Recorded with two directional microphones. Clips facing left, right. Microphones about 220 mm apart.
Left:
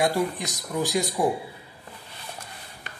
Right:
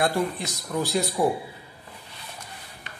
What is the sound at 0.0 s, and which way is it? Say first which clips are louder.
A man's voice: left 1 dB; 15° left (ahead or behind).